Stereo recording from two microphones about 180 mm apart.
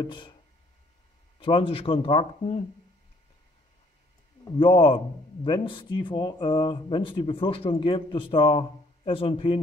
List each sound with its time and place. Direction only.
0.0 s speech: 25° left (ahead or behind)
1.4 s speech: 30° left (ahead or behind)
4.6 s speech: 30° left (ahead or behind)